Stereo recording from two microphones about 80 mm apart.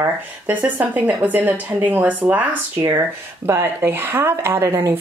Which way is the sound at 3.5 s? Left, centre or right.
Right.